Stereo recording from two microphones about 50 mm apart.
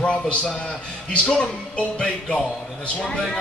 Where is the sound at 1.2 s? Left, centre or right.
Centre.